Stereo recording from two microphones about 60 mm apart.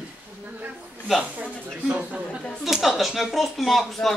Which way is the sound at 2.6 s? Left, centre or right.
Centre.